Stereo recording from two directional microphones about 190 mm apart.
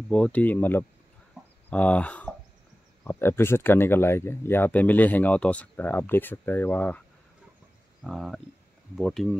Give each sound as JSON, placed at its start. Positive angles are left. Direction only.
{"t": 0.1, "sound": "speech", "side_deg": 5}
{"t": 8.0, "sound": "speech", "side_deg": 0}